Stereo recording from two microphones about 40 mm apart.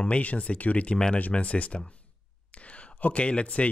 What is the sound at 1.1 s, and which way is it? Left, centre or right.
Speech, left.